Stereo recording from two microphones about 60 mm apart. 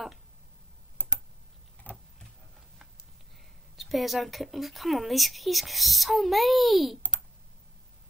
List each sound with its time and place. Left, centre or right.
1.0 s computer keyboard: left
3.7 s a woman's voice: centre